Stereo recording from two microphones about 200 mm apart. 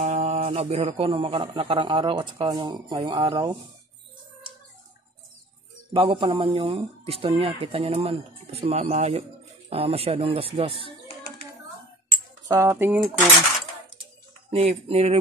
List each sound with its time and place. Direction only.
0.0 s a man's voice: 35° right (ahead or behind)
5.9 s a man's voice: 25° right (ahead or behind)
12.4 s speech: 15° right (ahead or behind)
14.5 s speech: 30° right (ahead or behind)